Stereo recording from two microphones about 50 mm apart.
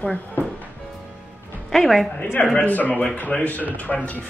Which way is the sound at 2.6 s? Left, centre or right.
Left.